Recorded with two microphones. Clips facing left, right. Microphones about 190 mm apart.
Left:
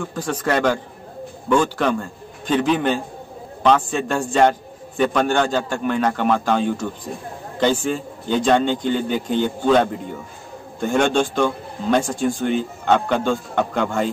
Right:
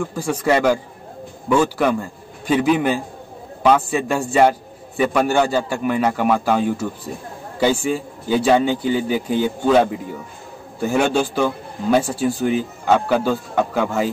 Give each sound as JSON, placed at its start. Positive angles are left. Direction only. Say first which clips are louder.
{"t": 0.0, "sound": "a man's voice", "louder": "right 3 dB", "side_deg": -10}